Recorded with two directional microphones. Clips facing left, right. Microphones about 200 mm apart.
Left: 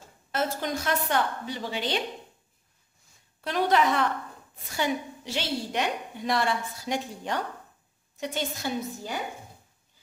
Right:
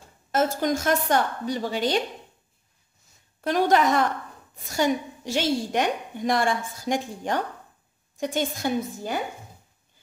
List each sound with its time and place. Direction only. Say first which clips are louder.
0.3 s a woman's voice: right 6 dB; 45° right (ahead or behind)
3.3 s a woman's voice: right 3 dB; 45° right (ahead or behind)